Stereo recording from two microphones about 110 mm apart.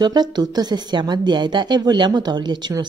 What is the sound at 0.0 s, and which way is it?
A woman's voice, 40° right (ahead or behind).